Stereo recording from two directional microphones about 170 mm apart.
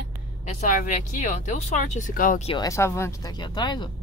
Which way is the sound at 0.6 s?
50° left (ahead or behind).